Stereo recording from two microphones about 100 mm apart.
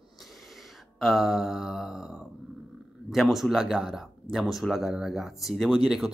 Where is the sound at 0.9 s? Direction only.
Centre (ahead or behind).